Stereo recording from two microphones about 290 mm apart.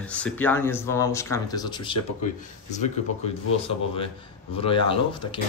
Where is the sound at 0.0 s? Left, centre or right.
Centre.